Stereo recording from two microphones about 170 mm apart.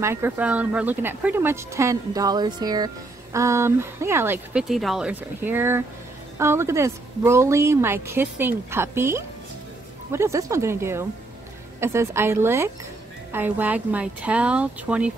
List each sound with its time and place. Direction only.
0.0 s a woman's voice: 15° right (ahead or behind)
4.6 s a woman's voice: centre (ahead or behind)